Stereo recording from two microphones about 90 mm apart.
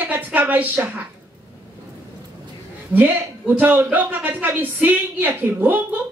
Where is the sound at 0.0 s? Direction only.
20° right (ahead or behind).